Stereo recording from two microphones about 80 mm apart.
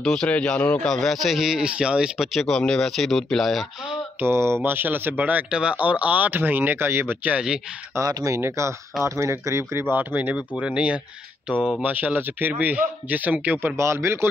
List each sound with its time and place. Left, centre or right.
0.0 s speech: centre
0.8 s speech: centre
2.3 s speech: centre
4.2 s speech: right
7.3 s speech: centre
8.1 s speech: right
9.9 s speech: right
13.7 s speech: right